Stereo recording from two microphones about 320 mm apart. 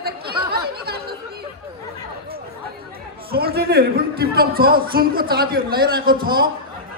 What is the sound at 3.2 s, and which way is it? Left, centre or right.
A man's voice, right.